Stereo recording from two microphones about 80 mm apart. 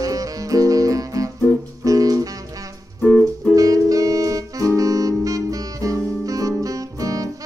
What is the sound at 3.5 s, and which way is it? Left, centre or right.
Saxophone, right.